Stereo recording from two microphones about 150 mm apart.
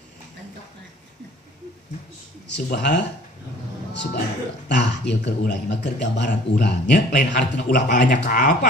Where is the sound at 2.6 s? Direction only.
90° left.